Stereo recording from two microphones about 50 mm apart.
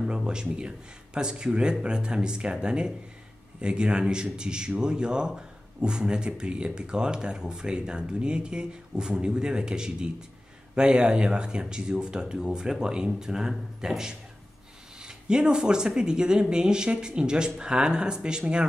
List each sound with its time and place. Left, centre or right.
0.1 s a man's voice: centre